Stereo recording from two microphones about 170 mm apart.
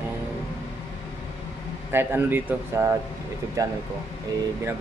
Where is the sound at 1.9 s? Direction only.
15° right (ahead or behind).